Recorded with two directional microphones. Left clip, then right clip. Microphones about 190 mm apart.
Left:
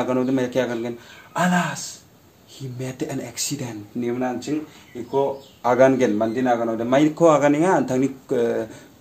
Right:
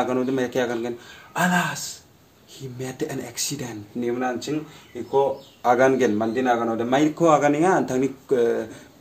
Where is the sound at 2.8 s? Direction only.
15° left (ahead or behind).